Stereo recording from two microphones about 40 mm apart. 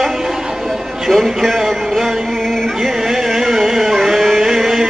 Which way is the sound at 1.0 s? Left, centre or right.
Centre.